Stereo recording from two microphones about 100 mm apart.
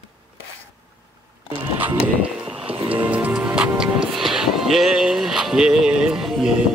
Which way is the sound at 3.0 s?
15° right (ahead or behind).